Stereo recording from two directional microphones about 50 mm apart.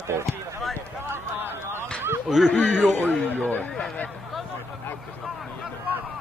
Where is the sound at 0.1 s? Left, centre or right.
Right.